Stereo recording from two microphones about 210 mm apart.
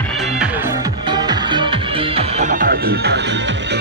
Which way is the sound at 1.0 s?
20° right (ahead or behind).